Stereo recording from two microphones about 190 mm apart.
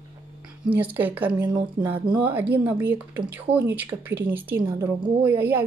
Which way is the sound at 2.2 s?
10° right (ahead or behind).